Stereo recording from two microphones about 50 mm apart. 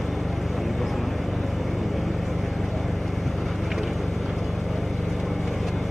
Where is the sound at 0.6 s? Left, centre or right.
Centre.